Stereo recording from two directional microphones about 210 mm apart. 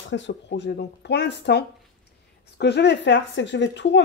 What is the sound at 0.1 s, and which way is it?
Speech, 60° left (ahead or behind).